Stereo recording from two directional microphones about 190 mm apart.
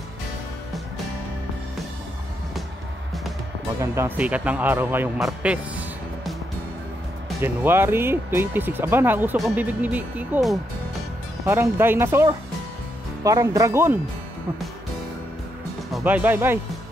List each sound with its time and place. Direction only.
3.8 s speech: 15° right (ahead or behind)
7.3 s speech: 10° right (ahead or behind)
16.0 s speech: 10° right (ahead or behind)